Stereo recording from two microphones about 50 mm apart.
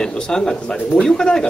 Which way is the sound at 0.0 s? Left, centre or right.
Centre.